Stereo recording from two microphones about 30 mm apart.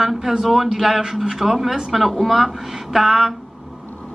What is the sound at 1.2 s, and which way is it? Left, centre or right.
Speech, centre.